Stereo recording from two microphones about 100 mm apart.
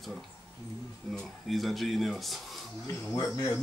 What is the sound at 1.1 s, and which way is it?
Speech, centre (ahead or behind).